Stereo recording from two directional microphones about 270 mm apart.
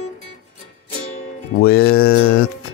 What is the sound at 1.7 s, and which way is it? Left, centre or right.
Music, left.